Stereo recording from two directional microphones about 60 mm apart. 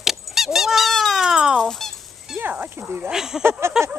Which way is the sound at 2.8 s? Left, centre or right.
Right.